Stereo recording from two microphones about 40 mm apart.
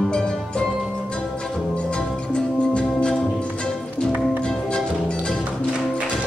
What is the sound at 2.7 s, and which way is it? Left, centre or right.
Music, left.